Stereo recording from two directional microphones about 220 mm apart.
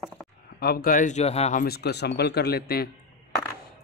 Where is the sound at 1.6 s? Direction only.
45° left (ahead or behind).